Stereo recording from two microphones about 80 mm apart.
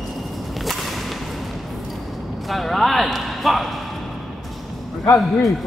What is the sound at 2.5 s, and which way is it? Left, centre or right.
Speech, centre.